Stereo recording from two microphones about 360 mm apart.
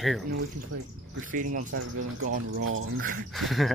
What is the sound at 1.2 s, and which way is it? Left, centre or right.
Speech, right.